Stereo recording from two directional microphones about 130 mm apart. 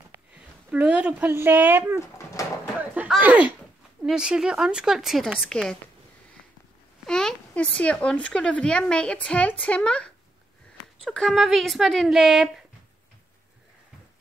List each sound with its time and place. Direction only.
0.7 s speech: 10° right (ahead or behind)
2.0 s pigeon: 20° left (ahead or behind)
2.8 s a sound: 10° right (ahead or behind)
4.0 s a woman's voice: 5° right (ahead or behind)
7.1 s a woman's voice: 5° left (ahead or behind)